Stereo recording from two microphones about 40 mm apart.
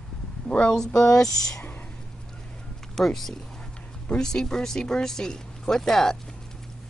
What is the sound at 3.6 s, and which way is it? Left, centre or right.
Speech, left.